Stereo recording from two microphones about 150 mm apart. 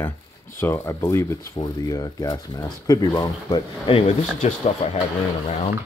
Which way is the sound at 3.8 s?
45° left (ahead or behind).